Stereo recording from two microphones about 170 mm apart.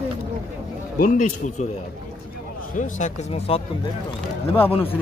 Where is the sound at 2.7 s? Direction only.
45° left (ahead or behind).